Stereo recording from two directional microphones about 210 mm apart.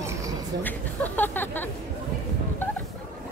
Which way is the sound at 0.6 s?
10° left (ahead or behind).